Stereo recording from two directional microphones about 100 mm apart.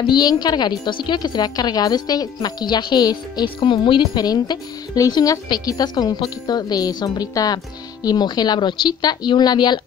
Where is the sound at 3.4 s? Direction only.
60° left (ahead or behind).